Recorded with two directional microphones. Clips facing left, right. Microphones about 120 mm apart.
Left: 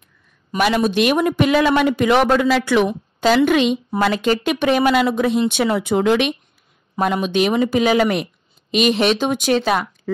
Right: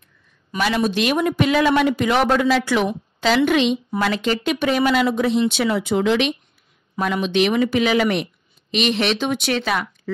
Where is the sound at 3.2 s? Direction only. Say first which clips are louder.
Left 3 dB; 45° left (ahead or behind).